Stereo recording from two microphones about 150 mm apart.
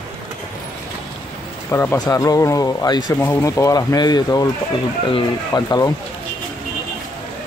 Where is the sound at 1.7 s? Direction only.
15° left (ahead or behind).